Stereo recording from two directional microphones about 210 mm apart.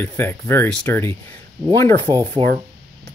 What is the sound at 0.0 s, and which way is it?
Speech, 10° left (ahead or behind).